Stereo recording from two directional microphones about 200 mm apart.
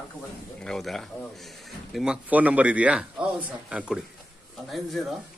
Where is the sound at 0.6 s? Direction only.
Centre (ahead or behind).